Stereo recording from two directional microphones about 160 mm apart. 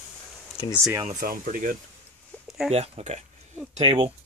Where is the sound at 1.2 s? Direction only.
60° right (ahead or behind).